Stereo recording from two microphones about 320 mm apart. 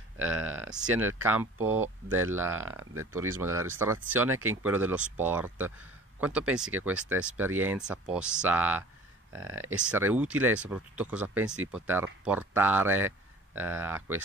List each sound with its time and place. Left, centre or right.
0.2 s speech: centre
2.8 s speech: right
3.5 s speech: centre
9.5 s speech: right
9.8 s speech: centre